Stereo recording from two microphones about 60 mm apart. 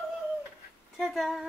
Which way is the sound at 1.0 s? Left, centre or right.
Centre.